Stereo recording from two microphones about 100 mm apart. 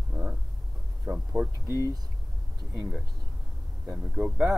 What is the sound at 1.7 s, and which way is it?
Speech, 35° right (ahead or behind).